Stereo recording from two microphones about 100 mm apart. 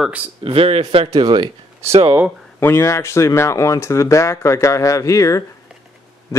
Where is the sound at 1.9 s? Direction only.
60° right (ahead or behind).